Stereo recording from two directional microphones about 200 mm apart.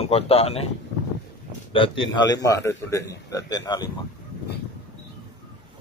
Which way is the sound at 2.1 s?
20° left (ahead or behind).